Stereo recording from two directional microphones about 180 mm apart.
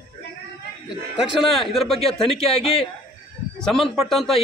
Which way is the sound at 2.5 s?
35° left (ahead or behind).